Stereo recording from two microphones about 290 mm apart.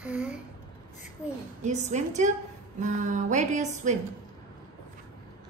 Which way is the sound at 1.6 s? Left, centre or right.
Right.